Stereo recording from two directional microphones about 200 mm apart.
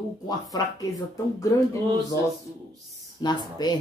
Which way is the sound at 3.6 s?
20° left (ahead or behind).